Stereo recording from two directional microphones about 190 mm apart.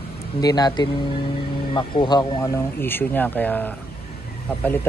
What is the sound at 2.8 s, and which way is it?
Speech, 10° left (ahead or behind).